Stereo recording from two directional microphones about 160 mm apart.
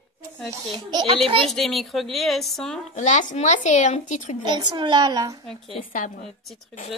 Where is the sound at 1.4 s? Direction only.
Centre (ahead or behind).